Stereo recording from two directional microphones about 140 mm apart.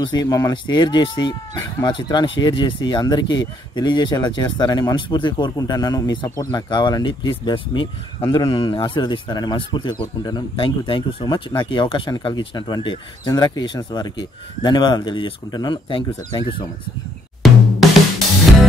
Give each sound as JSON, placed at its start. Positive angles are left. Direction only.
{"t": 0.0, "sound": "speech", "side_deg": 30}
{"t": 17.4, "sound": "drum", "side_deg": 0}